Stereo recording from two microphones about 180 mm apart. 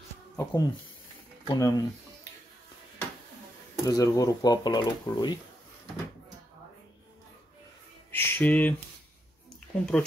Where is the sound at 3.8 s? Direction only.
20° left (ahead or behind).